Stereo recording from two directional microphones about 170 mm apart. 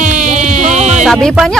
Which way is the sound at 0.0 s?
45° right (ahead or behind).